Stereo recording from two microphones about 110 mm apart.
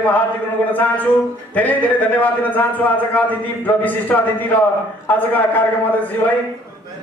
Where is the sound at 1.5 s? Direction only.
15° left (ahead or behind).